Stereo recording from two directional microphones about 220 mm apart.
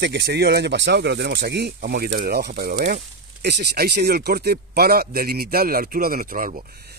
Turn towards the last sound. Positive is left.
turn(degrees=-45)  # may be behind; listen again after turning